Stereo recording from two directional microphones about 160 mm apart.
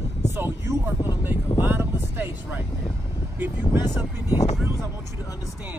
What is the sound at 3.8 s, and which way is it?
Speech, 25° left (ahead or behind).